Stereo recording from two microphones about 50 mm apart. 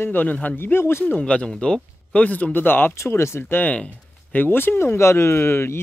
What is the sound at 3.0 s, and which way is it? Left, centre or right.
Speech, left.